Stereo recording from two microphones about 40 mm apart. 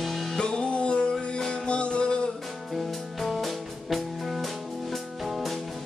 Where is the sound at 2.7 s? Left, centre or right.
Centre.